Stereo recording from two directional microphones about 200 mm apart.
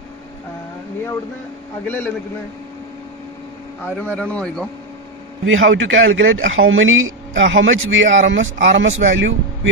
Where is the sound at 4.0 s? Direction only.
5° left (ahead or behind).